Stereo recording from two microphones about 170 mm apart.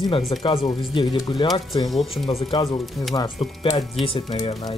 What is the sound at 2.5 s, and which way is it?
Speech, 25° left (ahead or behind).